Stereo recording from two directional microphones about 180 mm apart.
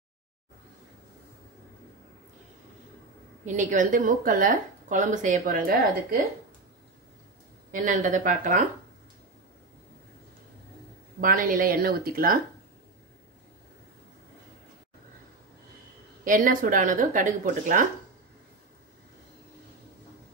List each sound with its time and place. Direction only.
3.4 s speech: 45° right (ahead or behind)
7.7 s speech: 45° right (ahead or behind)
11.1 s speech: 50° right (ahead or behind)
16.3 s speech: 50° right (ahead or behind)